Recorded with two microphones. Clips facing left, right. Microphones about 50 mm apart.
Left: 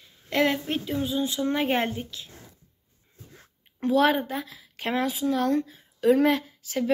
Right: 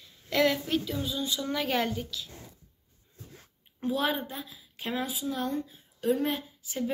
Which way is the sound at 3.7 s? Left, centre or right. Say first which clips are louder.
Left 8 dB; left.